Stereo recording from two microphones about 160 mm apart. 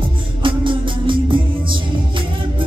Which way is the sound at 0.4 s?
30° right (ahead or behind).